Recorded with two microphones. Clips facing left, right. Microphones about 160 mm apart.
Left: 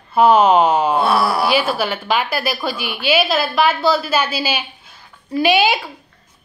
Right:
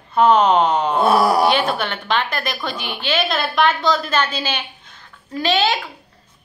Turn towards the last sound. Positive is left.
turn(degrees=10)  # may be behind; listen again after turning